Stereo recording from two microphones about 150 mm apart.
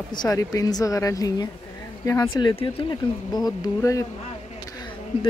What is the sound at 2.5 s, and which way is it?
Speech, 35° left (ahead or behind).